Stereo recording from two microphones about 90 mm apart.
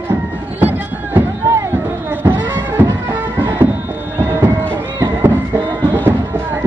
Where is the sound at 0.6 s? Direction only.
20° right (ahead or behind).